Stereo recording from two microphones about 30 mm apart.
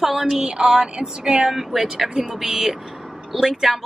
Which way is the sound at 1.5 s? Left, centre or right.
Centre.